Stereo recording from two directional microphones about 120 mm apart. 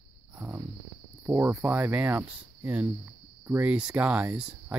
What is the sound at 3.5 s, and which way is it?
Speech, 10° right (ahead or behind).